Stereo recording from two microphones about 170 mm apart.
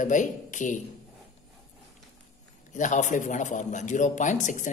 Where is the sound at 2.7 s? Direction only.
45° left (ahead or behind).